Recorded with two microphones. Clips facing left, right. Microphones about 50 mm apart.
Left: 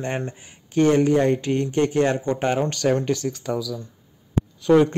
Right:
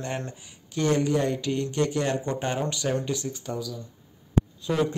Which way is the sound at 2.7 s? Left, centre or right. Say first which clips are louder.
Left 6 dB; left.